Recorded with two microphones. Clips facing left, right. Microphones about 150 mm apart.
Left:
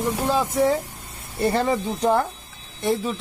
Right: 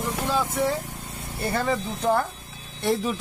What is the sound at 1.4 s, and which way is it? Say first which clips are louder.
Speech: left 4 dB; 25° left (ahead or behind).